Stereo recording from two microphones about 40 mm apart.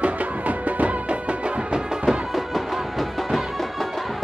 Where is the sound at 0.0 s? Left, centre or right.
Right.